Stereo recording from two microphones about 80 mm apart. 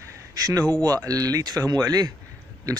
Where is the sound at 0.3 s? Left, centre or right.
Right.